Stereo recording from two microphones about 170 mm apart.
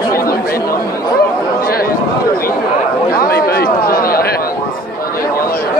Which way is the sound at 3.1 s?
60° left (ahead or behind).